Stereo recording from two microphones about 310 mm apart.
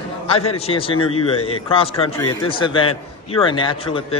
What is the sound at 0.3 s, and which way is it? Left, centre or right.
A man's voice, centre.